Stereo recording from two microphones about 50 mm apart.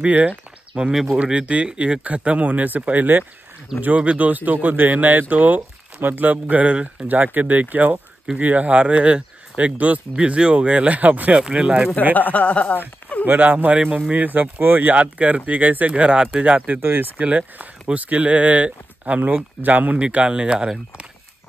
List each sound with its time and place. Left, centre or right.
0.0 s speech: right
0.7 s a man's voice: centre
7.3 s a man's voice: right
12.1 s speech: left
12.7 s a sound: left
13.2 s speech: right
13.5 s speech: right
16.8 s speech: right
17.2 s speech: right